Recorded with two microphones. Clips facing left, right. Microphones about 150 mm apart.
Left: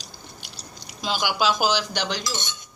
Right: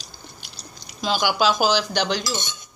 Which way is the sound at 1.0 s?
45° right (ahead or behind).